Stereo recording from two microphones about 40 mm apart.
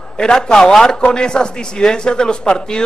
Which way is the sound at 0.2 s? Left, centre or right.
Centre.